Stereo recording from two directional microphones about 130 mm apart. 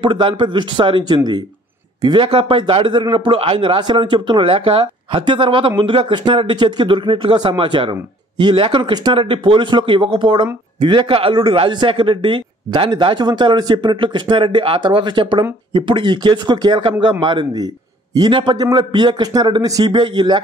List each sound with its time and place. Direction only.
0.0 s speech: 40° right (ahead or behind)